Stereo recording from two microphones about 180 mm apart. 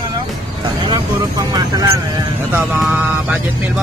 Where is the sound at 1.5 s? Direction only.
20° right (ahead or behind).